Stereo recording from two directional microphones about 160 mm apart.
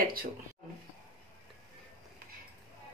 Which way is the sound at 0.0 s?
65° right (ahead or behind).